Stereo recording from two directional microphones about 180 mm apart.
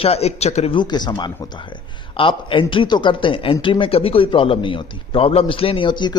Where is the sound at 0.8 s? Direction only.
25° left (ahead or behind).